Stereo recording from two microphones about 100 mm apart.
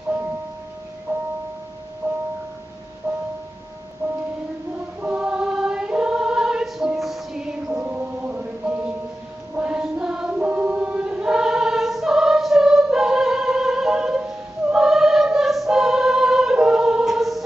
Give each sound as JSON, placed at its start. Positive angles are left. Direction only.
{"t": 1.1, "sound": "music", "side_deg": -20}
{"t": 4.0, "sound": "music", "side_deg": -30}
{"t": 5.0, "sound": "choir", "side_deg": -10}
{"t": 7.6, "sound": "mantra", "side_deg": -15}
{"t": 9.6, "sound": "choir", "side_deg": -10}